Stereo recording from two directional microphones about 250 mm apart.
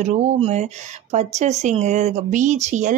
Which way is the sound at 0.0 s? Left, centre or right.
Right.